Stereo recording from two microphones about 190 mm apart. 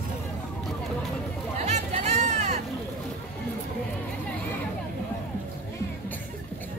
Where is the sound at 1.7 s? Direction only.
35° right (ahead or behind).